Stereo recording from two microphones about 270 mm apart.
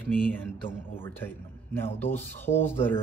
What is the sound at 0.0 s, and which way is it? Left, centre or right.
Speech, centre.